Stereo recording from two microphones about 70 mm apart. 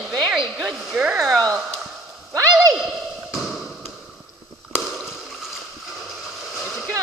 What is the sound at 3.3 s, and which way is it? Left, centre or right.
Tap, centre.